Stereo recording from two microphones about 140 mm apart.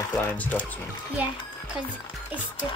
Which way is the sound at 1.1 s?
10° right (ahead or behind).